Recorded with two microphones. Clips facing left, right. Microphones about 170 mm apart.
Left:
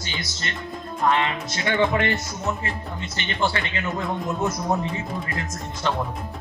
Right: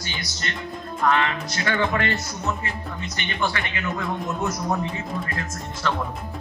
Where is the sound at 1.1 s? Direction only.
20° left (ahead or behind).